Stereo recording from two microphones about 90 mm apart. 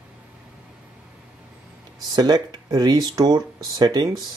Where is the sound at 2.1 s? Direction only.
50° right (ahead or behind).